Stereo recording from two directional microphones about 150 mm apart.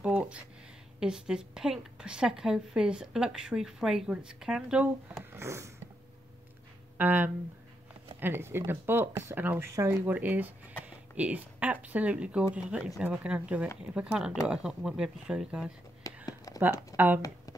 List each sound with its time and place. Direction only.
0.0 s a sound: 10° right (ahead or behind)
0.9 s speech: 5° right (ahead or behind)
5.1 s speech: 20° right (ahead or behind)
7.0 s speech: 10° right (ahead or behind)
16.0 s a sound: 20° left (ahead or behind)
16.9 s speech: 10° right (ahead or behind)